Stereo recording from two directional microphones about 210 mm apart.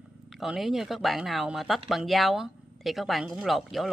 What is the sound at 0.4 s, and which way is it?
Speech, centre (ahead or behind).